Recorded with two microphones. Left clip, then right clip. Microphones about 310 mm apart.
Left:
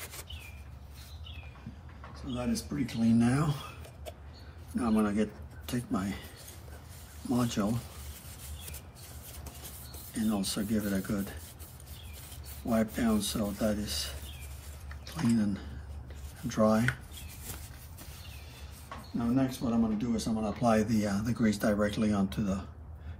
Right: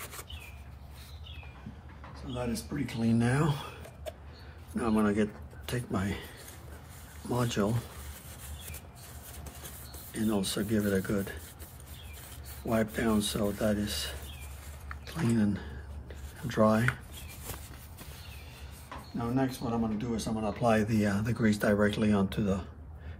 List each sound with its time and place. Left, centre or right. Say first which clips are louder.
2.3 s a man's voice: left 1 dB; right
4.7 s speech: right 1 dB; right
7.3 s a man's voice: right 1 dB; right
10.1 s a man's voice: right 2 dB; right
12.6 s a man's voice: right 1 dB; right
19.1 s a man's voice: left 1 dB; right